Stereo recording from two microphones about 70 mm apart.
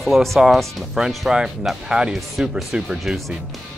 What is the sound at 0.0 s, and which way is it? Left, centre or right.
Speech, centre.